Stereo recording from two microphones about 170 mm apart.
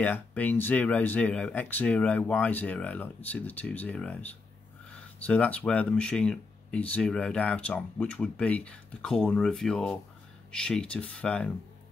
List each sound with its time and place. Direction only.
0.0 s speech: 10° left (ahead or behind)